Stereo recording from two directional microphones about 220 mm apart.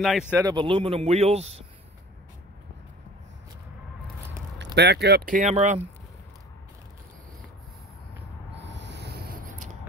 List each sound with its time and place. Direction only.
0.0 s a man's voice: 5° right (ahead or behind)
0.5 s a man's voice: 20° right (ahead or behind)
4.7 s speech: 50° right (ahead or behind); by 5.8 s 30° right (ahead or behind)
8.5 s owl: 55° right (ahead or behind)